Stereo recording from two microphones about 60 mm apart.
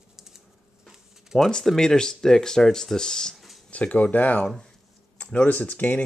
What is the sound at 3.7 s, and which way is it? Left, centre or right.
Speech, left.